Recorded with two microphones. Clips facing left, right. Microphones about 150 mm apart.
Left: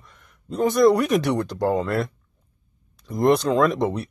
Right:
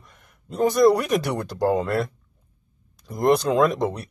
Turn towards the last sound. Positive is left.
turn(degrees=0)  # may be behind; listen again after turning